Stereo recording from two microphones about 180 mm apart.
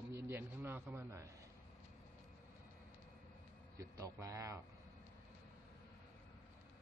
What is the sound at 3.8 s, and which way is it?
Speech, 20° right (ahead or behind).